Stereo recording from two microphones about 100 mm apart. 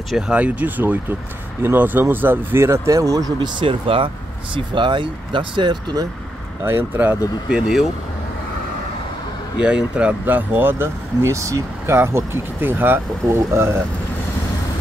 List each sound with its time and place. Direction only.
0.3 s speech: 15° right (ahead or behind); by 3.3 s 35° right (ahead or behind)
3.3 s speech: 50° right (ahead or behind)
6.6 s speech: 20° right (ahead or behind)
7.4 s speech: 5° right (ahead or behind)
9.6 s speech: 10° right (ahead or behind); by 13.7 s 25° right (ahead or behind)